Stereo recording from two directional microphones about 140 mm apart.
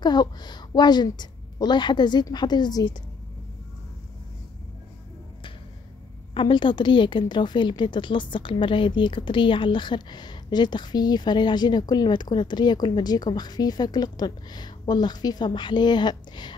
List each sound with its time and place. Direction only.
0.0 s a woman's voice: 30° left (ahead or behind)
6.3 s a woman's voice: 35° left (ahead or behind)